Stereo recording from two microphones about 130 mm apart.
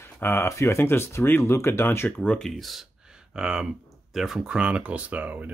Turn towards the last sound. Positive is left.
turn(degrees=-10)  # may be behind; listen again after turning